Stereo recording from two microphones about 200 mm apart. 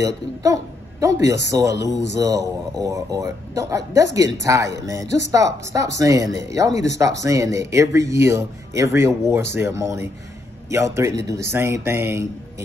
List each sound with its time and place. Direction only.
0.0 s speech: 15° right (ahead or behind)